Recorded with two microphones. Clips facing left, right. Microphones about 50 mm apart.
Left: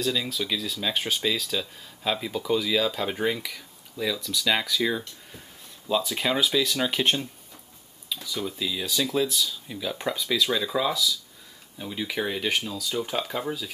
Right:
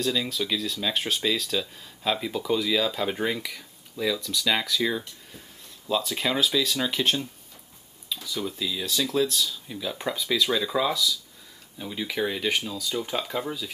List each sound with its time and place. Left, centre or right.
0.0 s speech: centre
6.9 s speech: centre
8.1 s speech: centre